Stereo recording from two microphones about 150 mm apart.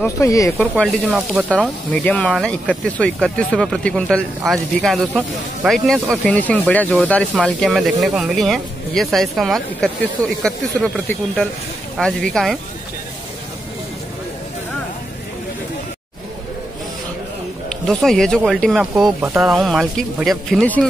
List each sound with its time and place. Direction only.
0.0 s speech: 20° left (ahead or behind)
0.7 s speech: centre (ahead or behind)
1.9 s speech: 10° left (ahead or behind)
17.6 s speech: centre (ahead or behind)